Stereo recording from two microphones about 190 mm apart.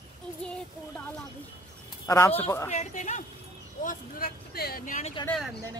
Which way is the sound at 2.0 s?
15° left (ahead or behind).